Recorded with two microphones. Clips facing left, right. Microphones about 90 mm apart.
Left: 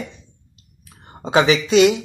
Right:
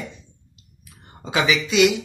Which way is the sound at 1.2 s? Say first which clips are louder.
Left 5 dB; 35° left (ahead or behind).